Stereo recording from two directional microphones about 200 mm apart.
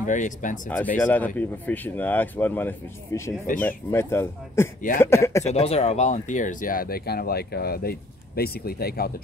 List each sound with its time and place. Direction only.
0.0 s speech: 40° left (ahead or behind)
0.9 s speech: 10° left (ahead or behind)
5.4 s speech: 30° left (ahead or behind); by 9.1 s 50° left (ahead or behind)